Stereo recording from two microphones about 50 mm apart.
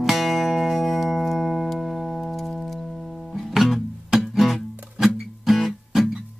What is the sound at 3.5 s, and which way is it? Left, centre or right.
Music, centre.